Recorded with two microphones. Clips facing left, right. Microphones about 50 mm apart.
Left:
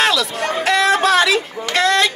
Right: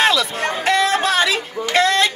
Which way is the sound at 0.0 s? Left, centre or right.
Centre.